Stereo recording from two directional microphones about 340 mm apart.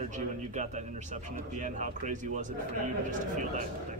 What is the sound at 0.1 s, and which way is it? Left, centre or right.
A man's voice, right.